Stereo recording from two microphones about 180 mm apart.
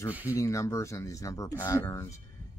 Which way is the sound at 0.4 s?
15° left (ahead or behind).